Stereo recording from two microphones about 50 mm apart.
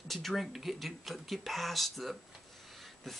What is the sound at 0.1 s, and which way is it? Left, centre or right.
Speech, centre.